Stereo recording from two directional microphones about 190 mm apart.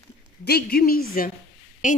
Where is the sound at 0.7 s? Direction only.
50° left (ahead or behind).